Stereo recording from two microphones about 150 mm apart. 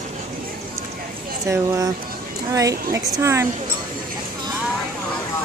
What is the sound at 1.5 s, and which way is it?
A woman's voice, 20° right (ahead or behind).